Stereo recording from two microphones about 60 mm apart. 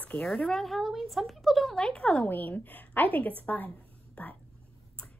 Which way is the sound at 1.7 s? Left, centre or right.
Centre.